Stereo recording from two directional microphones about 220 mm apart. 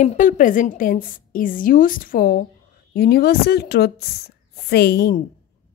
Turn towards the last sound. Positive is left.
turn(degrees=50)  # may be behind; listen again after turning